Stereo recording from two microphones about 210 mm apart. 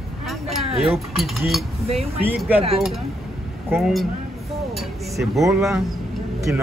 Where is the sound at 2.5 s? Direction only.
30° right (ahead or behind).